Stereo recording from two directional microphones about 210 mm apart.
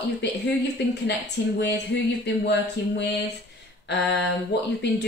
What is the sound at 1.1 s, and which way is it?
A woman's voice, 50° left (ahead or behind).